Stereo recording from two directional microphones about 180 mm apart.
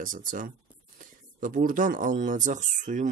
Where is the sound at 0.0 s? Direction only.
50° right (ahead or behind).